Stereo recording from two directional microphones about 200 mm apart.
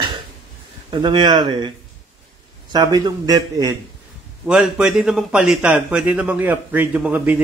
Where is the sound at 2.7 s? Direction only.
20° right (ahead or behind).